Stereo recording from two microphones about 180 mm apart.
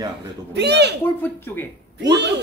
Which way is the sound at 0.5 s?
70° right (ahead or behind).